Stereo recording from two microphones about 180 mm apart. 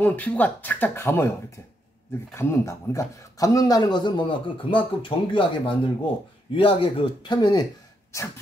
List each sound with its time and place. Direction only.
0.0 s speech: 10° left (ahead or behind)
2.3 s a man's voice: 15° left (ahead or behind)